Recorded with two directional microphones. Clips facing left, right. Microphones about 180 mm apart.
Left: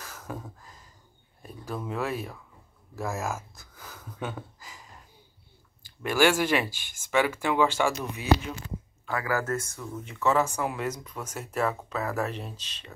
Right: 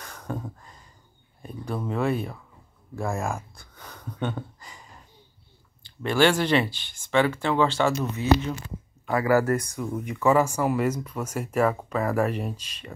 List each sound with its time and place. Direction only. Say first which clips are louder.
0.0 s a sound: right 5 dB; 5° left (ahead or behind)
1.4 s speech: right 4 dB; 5° left (ahead or behind)
6.0 s speech: right 2 dB; 10° left (ahead or behind)
9.5 s speech: right 6 dB; 15° right (ahead or behind)